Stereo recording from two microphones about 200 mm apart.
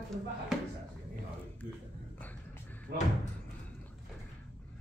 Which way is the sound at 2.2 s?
10° left (ahead or behind).